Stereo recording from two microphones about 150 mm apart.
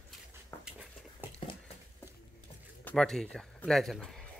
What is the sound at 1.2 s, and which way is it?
Patter, 10° right (ahead or behind).